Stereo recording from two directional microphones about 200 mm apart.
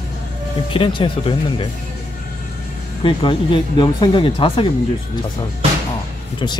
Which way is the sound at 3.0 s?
25° left (ahead or behind).